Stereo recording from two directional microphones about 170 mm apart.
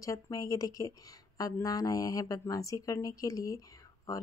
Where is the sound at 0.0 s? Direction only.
20° left (ahead or behind).